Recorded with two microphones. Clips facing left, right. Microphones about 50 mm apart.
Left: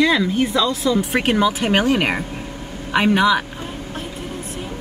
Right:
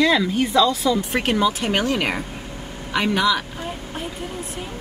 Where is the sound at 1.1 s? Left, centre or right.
Centre.